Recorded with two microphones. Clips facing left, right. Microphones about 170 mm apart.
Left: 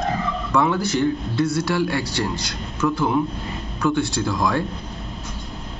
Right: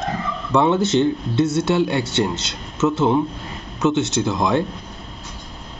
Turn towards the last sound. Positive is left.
turn(degrees=-20)  # may be behind; listen again after turning